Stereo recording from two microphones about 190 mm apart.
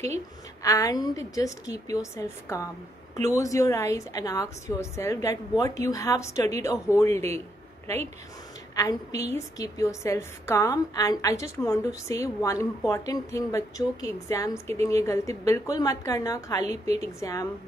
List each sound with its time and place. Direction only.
0.6 s a woman's voice: 15° left (ahead or behind)
8.7 s a woman's voice: 15° left (ahead or behind)
16.6 s a woman's voice: 35° right (ahead or behind)
17.2 s a woman's voice: 15° left (ahead or behind)